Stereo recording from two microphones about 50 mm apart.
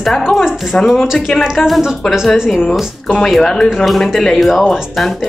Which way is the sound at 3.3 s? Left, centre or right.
Centre.